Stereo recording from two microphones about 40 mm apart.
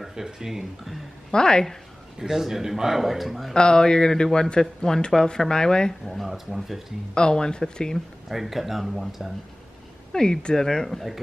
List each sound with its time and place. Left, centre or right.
0.1 s a man's voice: centre
1.3 s a man's voice: centre
2.1 s a man's voice: centre
3.5 s a man's voice: centre
6.2 s speech: centre
7.2 s a man's voice: left
8.3 s speech: centre
10.1 s speech: centre